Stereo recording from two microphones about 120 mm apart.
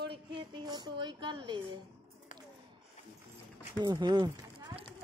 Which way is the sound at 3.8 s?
35° right (ahead or behind).